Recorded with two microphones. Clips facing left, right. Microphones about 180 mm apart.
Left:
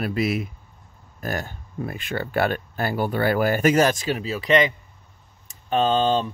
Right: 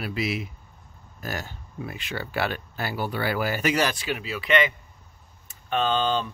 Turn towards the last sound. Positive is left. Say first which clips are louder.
# left 4 dB
turn(degrees=35)  # may be behind; listen again after turning